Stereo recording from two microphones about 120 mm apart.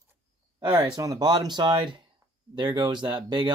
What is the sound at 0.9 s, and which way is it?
Speech, 30° right (ahead or behind).